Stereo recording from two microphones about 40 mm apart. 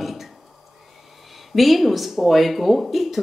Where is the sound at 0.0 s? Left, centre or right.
Centre.